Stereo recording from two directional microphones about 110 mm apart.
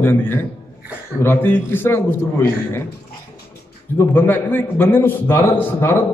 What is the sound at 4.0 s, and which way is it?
A man's voice, 20° left (ahead or behind).